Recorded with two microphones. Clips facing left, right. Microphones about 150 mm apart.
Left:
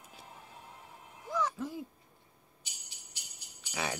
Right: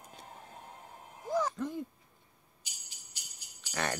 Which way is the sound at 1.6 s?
5° left (ahead or behind).